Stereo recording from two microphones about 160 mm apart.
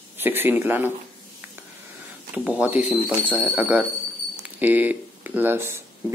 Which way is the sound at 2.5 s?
10° right (ahead or behind).